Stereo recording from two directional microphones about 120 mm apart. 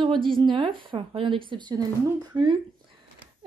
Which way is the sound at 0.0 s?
45° right (ahead or behind).